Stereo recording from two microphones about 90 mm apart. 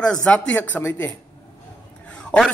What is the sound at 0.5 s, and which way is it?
Speech, 20° left (ahead or behind).